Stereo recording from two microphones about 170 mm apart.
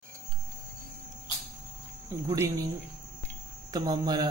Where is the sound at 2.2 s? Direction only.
15° right (ahead or behind).